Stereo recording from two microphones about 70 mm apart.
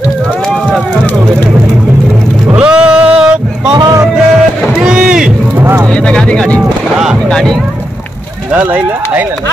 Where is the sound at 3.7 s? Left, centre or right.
Right.